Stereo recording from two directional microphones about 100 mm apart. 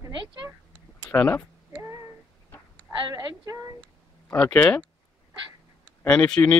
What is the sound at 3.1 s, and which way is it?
Speech, 35° right (ahead or behind).